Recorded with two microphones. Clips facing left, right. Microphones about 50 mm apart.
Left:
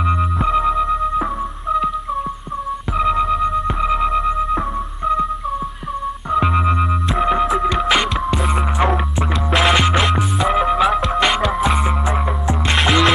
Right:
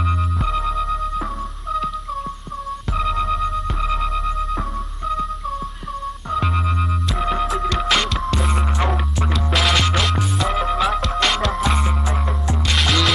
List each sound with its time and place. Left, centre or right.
0.5 s music: left
3.0 s music: centre
6.3 s music: centre